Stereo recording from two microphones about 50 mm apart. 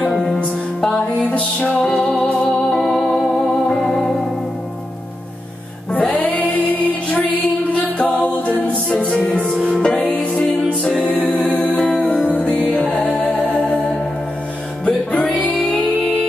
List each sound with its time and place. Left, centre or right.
0.1 s music: centre
0.9 s music: left
1.8 s music: centre
5.9 s music: left
11.1 s music: left; by 13.2 s centre
14.9 s music: left